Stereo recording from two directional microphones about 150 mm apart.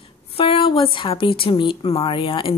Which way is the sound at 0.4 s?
35° left (ahead or behind).